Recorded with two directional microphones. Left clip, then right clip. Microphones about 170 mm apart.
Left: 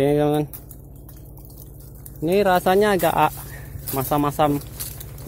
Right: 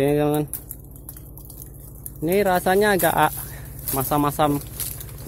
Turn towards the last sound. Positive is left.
turn(degrees=10)  # may be behind; listen again after turning